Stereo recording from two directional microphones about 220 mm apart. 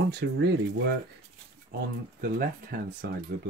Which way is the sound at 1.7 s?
45° right (ahead or behind).